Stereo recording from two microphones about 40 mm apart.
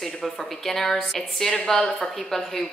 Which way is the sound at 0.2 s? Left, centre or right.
Centre.